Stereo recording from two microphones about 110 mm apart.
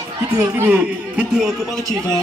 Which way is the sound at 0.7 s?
15° right (ahead or behind).